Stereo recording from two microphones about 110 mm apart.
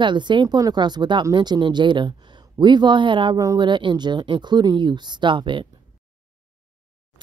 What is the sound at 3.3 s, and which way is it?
Speech, 30° right (ahead or behind).